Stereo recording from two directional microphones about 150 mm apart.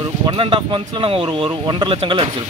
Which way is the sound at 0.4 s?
35° right (ahead or behind).